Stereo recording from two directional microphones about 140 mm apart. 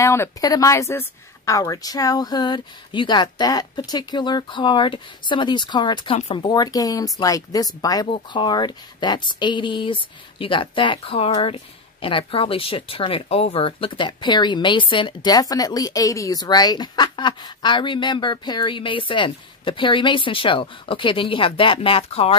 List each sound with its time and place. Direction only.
0.0 s speech: 20° left (ahead or behind)
6.1 s speech: 40° left (ahead or behind)